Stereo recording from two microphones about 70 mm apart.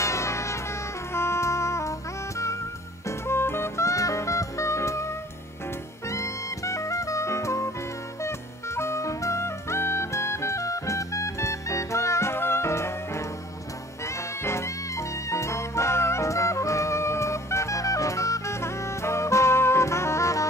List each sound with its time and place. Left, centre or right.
0.0 s music: left